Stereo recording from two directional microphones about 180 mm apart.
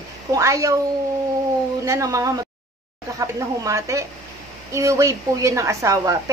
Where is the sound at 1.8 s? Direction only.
20° right (ahead or behind).